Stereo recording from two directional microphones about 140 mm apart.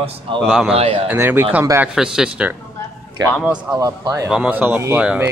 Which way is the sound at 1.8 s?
5° right (ahead or behind).